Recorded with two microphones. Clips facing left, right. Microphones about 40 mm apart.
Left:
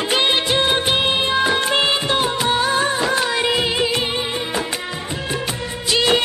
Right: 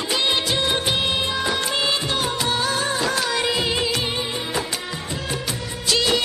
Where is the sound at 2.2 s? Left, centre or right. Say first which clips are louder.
Left 4 dB; left.